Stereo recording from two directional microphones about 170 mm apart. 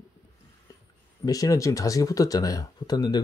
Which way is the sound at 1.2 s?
20° left (ahead or behind).